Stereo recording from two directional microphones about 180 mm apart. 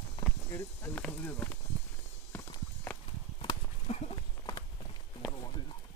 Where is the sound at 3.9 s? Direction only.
25° left (ahead or behind).